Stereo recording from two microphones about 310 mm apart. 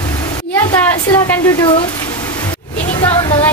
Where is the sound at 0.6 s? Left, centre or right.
Centre.